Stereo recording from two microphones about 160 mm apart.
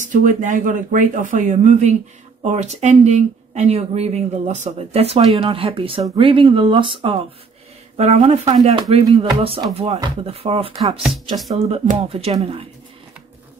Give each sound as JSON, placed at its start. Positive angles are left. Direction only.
{"t": 0.0, "sound": "speech", "side_deg": -50}
{"t": 8.7, "sound": "speech", "side_deg": -30}
{"t": 11.0, "sound": "speech", "side_deg": 0}
{"t": 11.5, "sound": "speech", "side_deg": -40}